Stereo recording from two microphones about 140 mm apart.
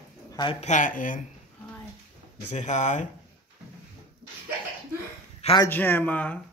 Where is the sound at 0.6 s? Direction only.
60° left (ahead or behind).